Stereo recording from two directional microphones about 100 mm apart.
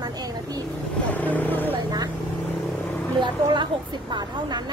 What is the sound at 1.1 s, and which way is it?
Vehicle, 15° left (ahead or behind).